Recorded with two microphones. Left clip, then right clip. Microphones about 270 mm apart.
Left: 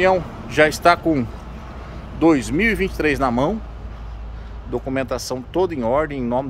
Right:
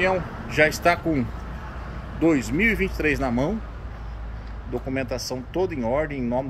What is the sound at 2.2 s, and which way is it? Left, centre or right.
Speech, centre.